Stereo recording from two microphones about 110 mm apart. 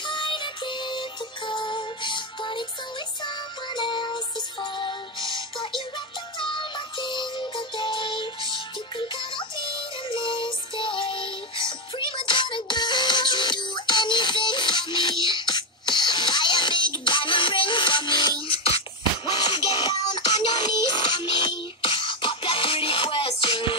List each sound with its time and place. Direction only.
0.1 s music: 45° left (ahead or behind)
1.5 s music: 45° left (ahead or behind)
3.7 s music: 45° left (ahead or behind)
9.6 s music: 50° left (ahead or behind)
18.5 s music: 60° left (ahead or behind)
19.2 s music: 40° left (ahead or behind)